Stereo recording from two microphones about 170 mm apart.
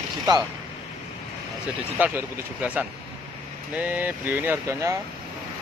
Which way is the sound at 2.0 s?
10° right (ahead or behind).